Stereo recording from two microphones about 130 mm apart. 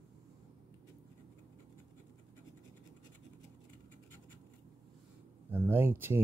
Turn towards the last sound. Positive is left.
turn(degrees=-15)  # may be behind; listen again after turning